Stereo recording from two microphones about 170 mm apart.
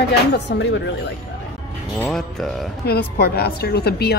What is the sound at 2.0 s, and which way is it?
Speech, centre (ahead or behind).